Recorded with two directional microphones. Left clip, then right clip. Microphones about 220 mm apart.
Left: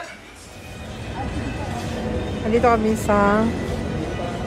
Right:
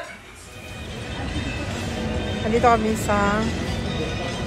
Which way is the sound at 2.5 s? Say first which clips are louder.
Left 1 dB; 10° left (ahead or behind).